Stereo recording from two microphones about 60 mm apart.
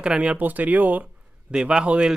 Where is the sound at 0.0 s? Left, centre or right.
Centre.